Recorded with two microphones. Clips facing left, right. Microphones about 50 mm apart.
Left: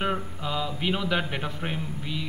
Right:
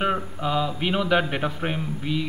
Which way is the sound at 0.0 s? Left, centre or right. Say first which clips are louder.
Right 4 dB; centre.